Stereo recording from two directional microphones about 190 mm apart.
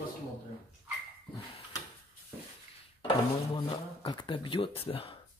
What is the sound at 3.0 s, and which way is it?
Speech, 25° left (ahead or behind).